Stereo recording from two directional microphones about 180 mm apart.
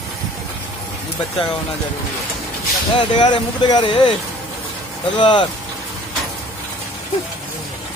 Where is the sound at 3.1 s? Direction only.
25° left (ahead or behind).